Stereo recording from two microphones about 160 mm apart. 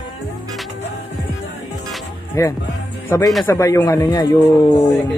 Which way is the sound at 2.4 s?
20° left (ahead or behind).